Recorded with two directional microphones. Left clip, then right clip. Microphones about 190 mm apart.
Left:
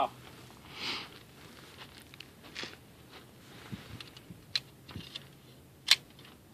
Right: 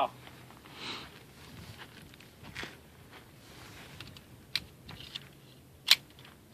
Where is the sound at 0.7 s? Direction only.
5° left (ahead or behind).